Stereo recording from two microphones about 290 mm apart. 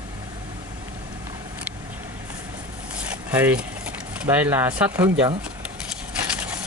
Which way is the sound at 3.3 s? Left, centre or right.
Centre.